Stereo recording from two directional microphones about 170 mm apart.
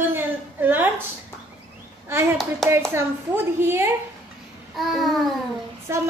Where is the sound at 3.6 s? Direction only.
15° right (ahead or behind).